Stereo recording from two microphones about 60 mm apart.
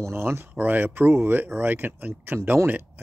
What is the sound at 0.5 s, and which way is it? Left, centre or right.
Speech, right.